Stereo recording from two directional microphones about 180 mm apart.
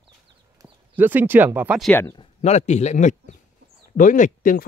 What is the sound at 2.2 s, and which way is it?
Speech, 35° left (ahead or behind).